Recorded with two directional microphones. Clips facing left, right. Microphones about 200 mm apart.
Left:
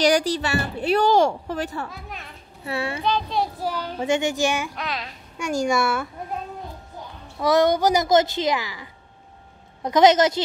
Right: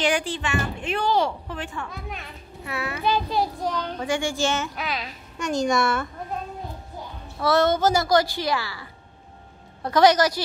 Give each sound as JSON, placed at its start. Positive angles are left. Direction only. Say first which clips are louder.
{"t": 0.0, "sound": "speech", "louder": "left 5 dB", "side_deg": 40}
{"t": 1.9, "sound": "speech", "louder": "right 2 dB", "side_deg": 0}
{"t": 2.6, "sound": "speech", "louder": "left 4 dB", "side_deg": 30}
{"t": 3.0, "sound": "speech", "louder": "right 3 dB", "side_deg": -5}
{"t": 4.0, "sound": "a child's voice", "louder": "left 4 dB", "side_deg": 20}
{"t": 4.7, "sound": "speech", "louder": "even", "side_deg": 0}
{"t": 5.4, "sound": "a child's voice", "louder": "even", "side_deg": 10}
{"t": 7.3, "sound": "a child's voice", "louder": "left 2 dB", "side_deg": 15}
{"t": 9.8, "sound": "a woman's voice", "louder": "left 2 dB", "side_deg": 20}